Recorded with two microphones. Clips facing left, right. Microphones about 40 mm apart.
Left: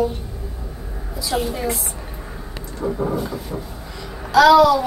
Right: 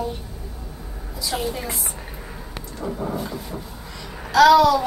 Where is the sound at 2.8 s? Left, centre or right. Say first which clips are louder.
Left 5 dB; centre.